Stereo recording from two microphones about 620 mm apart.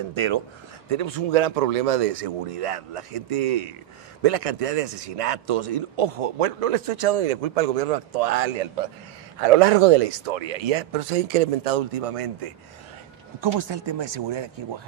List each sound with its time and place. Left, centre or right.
0.1 s speech: right
0.8 s a man's voice: right
9.4 s a man's voice: right
13.4 s speech: right